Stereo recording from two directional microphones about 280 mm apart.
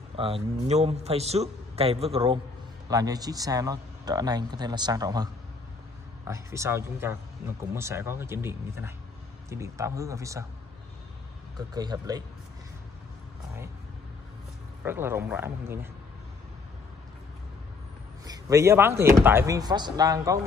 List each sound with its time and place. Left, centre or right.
0.1 s a man's voice: centre
11.5 s a man's voice: centre
14.8 s a man's voice: centre
18.2 s a man's voice: centre